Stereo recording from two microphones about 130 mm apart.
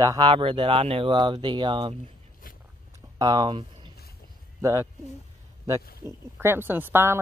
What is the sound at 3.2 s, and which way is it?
Speech, 30° right (ahead or behind).